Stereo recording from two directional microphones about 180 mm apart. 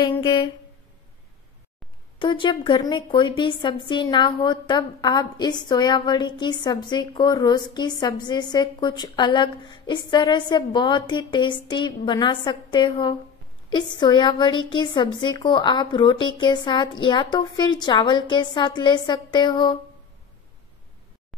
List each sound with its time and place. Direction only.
0.2 s a woman's voice: 25° left (ahead or behind)
2.1 s a woman's voice: 25° left (ahead or behind)